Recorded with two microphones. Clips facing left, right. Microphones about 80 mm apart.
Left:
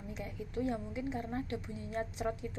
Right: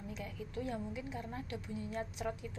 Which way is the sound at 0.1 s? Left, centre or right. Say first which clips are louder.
Left 4 dB; left.